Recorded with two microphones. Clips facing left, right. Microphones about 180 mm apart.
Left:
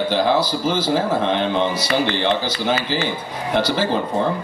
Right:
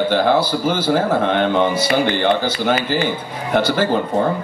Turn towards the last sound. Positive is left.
turn(degrees=-50)  # may be behind; listen again after turning